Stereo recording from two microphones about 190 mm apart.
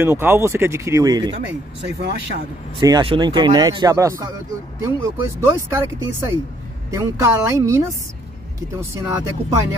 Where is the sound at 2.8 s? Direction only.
25° right (ahead or behind).